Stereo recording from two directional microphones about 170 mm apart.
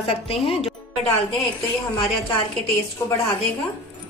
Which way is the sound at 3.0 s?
20° left (ahead or behind).